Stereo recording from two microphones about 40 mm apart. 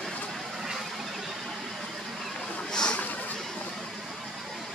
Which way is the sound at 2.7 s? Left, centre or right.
Centre.